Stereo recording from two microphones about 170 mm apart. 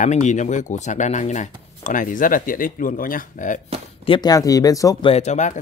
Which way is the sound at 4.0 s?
25° left (ahead or behind).